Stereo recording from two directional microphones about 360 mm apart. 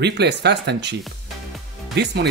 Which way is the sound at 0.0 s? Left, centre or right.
Right.